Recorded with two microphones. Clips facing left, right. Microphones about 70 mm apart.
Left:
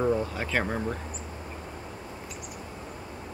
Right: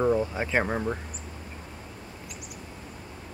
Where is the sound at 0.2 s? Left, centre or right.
Right.